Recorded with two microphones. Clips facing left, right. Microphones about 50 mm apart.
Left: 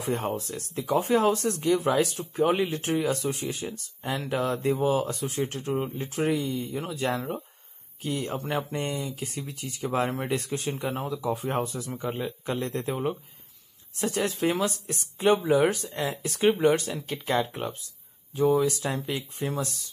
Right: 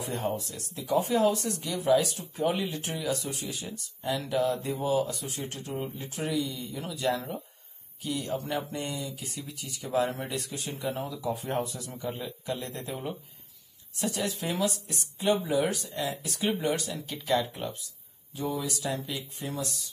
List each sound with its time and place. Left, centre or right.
0.0 s speech: left